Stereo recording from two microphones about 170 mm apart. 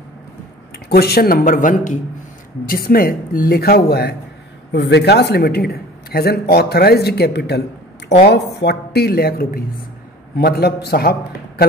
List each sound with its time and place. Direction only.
0.8 s a man's voice: 70° left (ahead or behind)
4.7 s a man's voice: 85° left; by 11.6 s 70° left (ahead or behind)